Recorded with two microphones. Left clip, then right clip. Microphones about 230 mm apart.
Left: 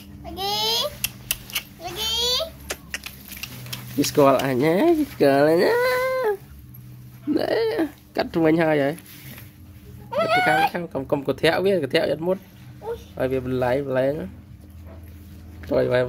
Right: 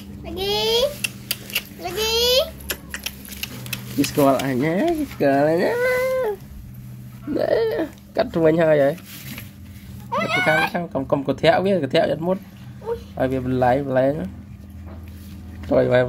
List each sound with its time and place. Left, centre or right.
0.4 s a sound: left
2.0 s a sound: left
3.7 s speech: left
7.3 s speech: left
10.1 s speech: left
15.7 s speech: centre